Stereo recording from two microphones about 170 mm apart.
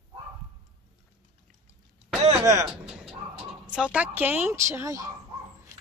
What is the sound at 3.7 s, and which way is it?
A woman's voice, 5° right (ahead or behind).